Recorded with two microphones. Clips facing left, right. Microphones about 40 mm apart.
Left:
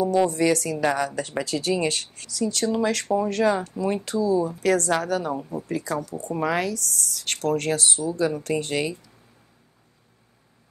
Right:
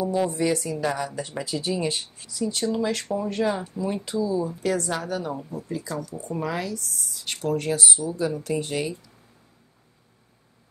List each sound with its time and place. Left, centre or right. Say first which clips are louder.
0.3 s speech: left 3 dB; left
1.4 s speech: left 3 dB; left
5.3 s speech: left 3 dB; centre
5.7 s speech: left 4 dB; left